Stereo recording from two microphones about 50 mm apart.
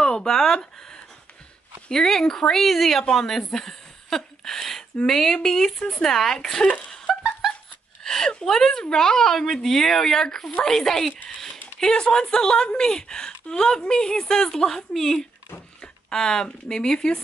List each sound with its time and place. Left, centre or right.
0.0 s a woman's voice: centre
3.4 s a sound: centre
5.0 s a woman's voice: centre
7.1 s a sound: centre
8.4 s a woman's voice: centre
11.8 s a woman's voice: centre